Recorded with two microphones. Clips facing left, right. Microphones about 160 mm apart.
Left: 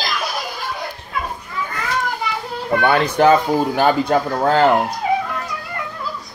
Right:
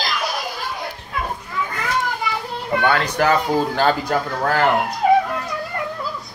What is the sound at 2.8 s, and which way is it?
Speech, 20° left (ahead or behind).